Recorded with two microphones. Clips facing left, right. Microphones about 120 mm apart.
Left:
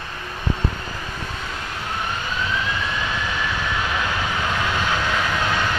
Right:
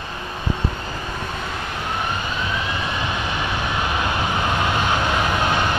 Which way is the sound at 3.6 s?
20° right (ahead or behind).